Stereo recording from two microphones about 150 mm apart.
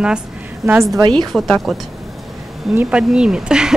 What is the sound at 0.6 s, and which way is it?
Speech, 20° right (ahead or behind).